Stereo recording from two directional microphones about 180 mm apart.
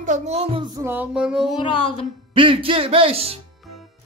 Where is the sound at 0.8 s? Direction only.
10° right (ahead or behind).